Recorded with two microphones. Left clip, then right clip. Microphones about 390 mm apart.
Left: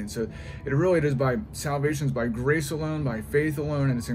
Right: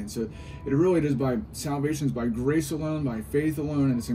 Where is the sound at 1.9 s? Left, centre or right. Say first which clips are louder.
Left 1 dB; centre.